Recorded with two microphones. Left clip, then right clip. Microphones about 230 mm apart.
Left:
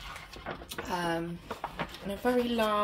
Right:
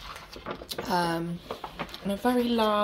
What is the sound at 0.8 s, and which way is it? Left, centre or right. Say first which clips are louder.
Speech: right 5 dB; right.